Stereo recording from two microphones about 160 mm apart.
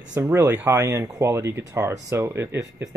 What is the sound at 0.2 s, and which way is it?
Speech, 15° right (ahead or behind).